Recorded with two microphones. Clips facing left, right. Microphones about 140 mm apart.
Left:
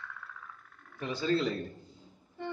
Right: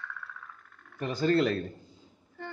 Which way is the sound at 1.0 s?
50° right (ahead or behind).